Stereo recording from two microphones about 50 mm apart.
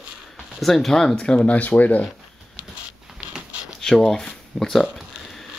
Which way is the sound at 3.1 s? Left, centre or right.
Centre.